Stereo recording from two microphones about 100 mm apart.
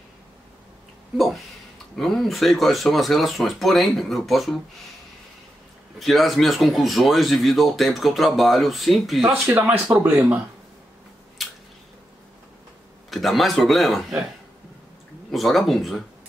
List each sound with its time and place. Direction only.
1.1 s speech: centre (ahead or behind)
5.9 s speech: centre (ahead or behind)
9.2 s speech: 15° right (ahead or behind)
11.4 s a sound: centre (ahead or behind)
13.1 s speech: centre (ahead or behind)
15.3 s speech: centre (ahead or behind)